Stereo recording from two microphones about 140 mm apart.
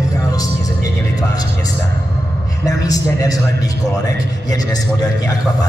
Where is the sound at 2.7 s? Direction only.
25° left (ahead or behind).